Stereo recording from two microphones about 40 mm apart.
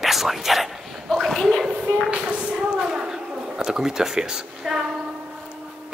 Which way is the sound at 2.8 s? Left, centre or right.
Centre.